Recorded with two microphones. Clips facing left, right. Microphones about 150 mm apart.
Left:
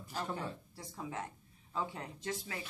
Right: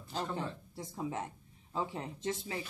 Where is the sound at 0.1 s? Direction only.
25° right (ahead or behind).